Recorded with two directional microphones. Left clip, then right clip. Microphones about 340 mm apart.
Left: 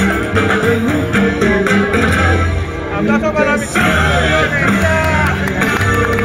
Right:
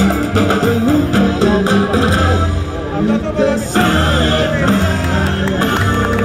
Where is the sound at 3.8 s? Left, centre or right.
Right.